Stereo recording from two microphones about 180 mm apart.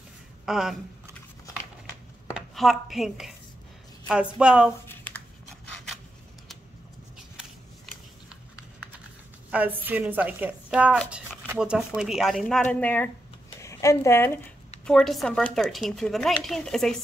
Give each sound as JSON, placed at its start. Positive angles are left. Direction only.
{"t": 0.5, "sound": "speech", "side_deg": 0}
{"t": 2.5, "sound": "speech", "side_deg": 0}
{"t": 4.4, "sound": "speech", "side_deg": -5}
{"t": 4.8, "sound": "shuffling cards", "side_deg": 10}
{"t": 9.5, "sound": "a woman's voice", "side_deg": -10}
{"t": 14.9, "sound": "speech", "side_deg": 0}